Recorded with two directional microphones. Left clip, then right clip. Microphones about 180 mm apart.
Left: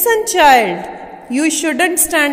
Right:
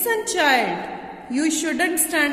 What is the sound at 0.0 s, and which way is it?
A woman's voice, 35° left (ahead or behind).